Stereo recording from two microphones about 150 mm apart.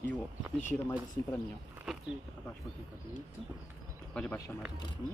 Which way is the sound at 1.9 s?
Centre (ahead or behind).